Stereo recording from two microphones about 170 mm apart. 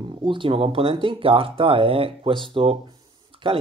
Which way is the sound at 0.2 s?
30° right (ahead or behind).